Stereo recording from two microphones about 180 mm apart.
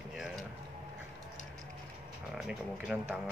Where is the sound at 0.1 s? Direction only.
Centre (ahead or behind).